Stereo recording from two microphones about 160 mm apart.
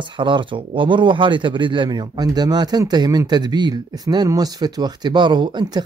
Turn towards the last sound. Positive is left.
turn(degrees=-30)  # may be behind; listen again after turning